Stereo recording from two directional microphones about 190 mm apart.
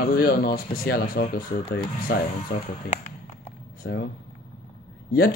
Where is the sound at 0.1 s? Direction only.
55° left (ahead or behind).